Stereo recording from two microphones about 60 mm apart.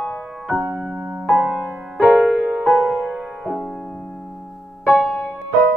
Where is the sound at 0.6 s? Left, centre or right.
Right.